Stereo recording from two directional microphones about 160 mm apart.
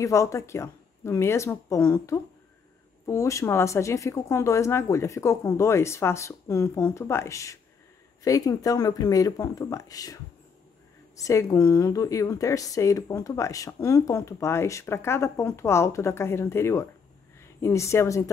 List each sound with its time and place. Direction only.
0.0 s a woman's voice: 20° left (ahead or behind)